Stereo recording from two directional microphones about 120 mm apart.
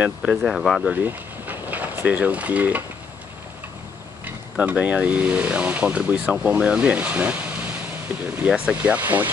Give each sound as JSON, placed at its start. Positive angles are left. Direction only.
{"t": 0.3, "sound": "speech", "side_deg": 0}
{"t": 0.9, "sound": "a sound", "side_deg": -15}
{"t": 4.2, "sound": "speech", "side_deg": -10}